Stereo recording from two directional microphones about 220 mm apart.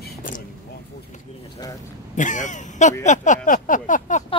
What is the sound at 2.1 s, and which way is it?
Speech, 35° left (ahead or behind).